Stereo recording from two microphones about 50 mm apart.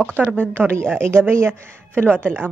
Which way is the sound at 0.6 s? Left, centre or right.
Right.